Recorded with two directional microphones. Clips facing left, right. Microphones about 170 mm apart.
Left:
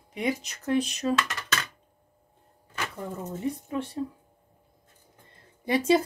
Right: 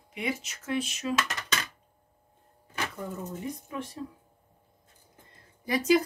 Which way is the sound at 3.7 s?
30° left (ahead or behind).